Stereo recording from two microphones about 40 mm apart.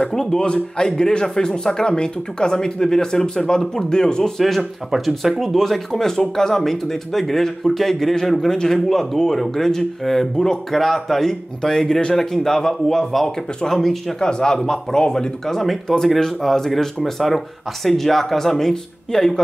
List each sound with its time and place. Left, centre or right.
0.0 s speech: centre
4.4 s speech: centre
14.2 s speech: centre